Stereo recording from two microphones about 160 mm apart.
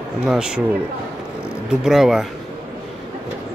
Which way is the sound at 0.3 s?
5° right (ahead or behind).